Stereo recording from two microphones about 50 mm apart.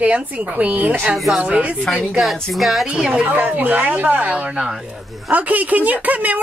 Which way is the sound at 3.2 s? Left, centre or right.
Right.